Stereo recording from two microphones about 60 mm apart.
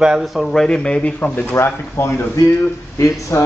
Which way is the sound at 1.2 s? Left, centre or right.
Left.